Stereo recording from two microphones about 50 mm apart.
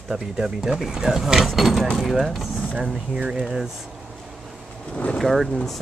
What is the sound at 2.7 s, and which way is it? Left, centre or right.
Speech, centre.